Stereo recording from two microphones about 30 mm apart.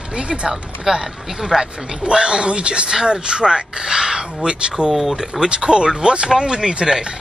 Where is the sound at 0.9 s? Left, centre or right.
Centre.